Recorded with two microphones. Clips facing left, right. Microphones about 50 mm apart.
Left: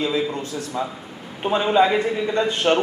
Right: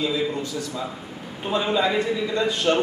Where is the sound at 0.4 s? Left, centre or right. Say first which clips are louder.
Left 2 dB; left.